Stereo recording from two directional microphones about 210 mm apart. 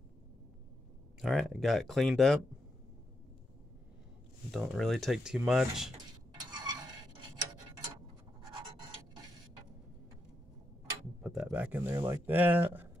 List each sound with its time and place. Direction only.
1.2 s speech: centre (ahead or behind)
4.5 s speech: centre (ahead or behind)
6.5 s a sound: 20° right (ahead or behind)
11.2 s speech: 5° right (ahead or behind)